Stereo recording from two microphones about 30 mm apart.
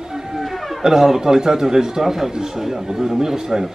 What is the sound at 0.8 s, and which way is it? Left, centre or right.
Speech, centre.